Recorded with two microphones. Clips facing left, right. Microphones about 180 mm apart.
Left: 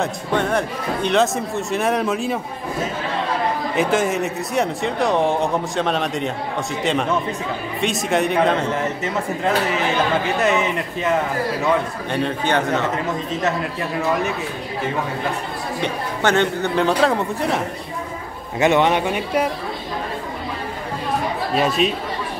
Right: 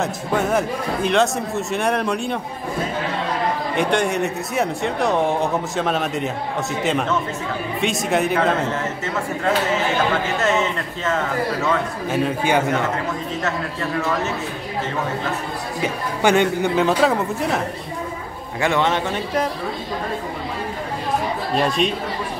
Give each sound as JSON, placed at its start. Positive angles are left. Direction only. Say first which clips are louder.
{"t": 0.0, "sound": "speech", "louder": "even", "side_deg": -5}
{"t": 3.7, "sound": "speech", "louder": "left 1 dB", "side_deg": 0}
{"t": 8.7, "sound": "speech", "louder": "left 2 dB", "side_deg": 15}
{"t": 12.1, "sound": "a man's voice", "louder": "right 1 dB", "side_deg": -5}
{"t": 15.8, "sound": "speech", "louder": "right 2 dB", "side_deg": -10}
{"t": 18.6, "sound": "speech", "louder": "left 3 dB", "side_deg": 20}
{"t": 21.5, "sound": "speech", "louder": "left 1 dB", "side_deg": 5}